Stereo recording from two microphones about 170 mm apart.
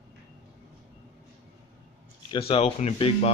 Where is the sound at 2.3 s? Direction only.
35° left (ahead or behind).